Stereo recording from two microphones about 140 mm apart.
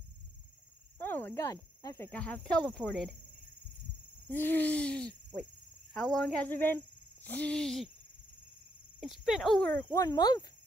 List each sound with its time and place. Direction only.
0.9 s cricket: 15° left (ahead or behind)
2.0 s speech: 10° left (ahead or behind)
4.3 s speech: 15° left (ahead or behind)
9.0 s speech: 5° right (ahead or behind)
9.9 s speech: 25° left (ahead or behind)